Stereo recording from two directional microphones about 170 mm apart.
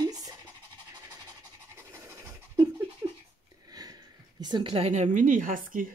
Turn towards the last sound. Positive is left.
turn(degrees=-50)  # may be behind; listen again after turning